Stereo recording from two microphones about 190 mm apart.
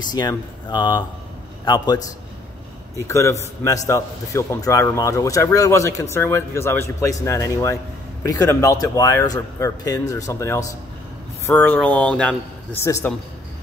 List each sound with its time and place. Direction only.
0.1 s a man's voice: 20° left (ahead or behind)
3.1 s a man's voice: 15° left (ahead or behind)